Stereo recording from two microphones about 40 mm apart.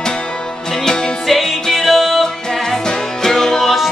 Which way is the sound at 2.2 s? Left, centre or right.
Centre.